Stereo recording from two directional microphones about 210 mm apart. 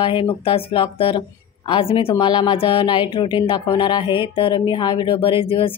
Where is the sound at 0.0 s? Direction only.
25° left (ahead or behind).